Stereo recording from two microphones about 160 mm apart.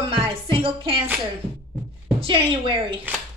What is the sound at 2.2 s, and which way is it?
Speech, 35° right (ahead or behind).